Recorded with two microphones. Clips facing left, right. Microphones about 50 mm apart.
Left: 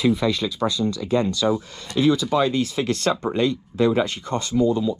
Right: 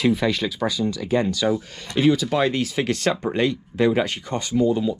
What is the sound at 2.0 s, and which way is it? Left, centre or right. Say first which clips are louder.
Speech: even; right.